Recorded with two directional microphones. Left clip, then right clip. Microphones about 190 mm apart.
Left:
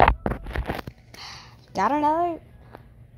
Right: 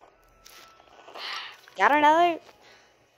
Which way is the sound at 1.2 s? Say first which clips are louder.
Right 6 dB; 10° left (ahead or behind).